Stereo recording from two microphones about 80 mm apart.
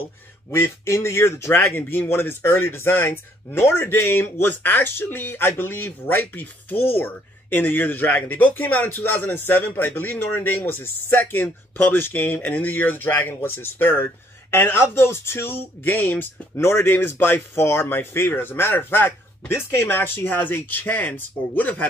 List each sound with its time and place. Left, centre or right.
0.5 s speech: left; by 21.8 s centre